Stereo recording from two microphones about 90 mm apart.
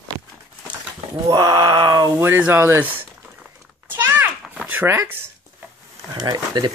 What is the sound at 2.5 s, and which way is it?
Speech, 25° right (ahead or behind).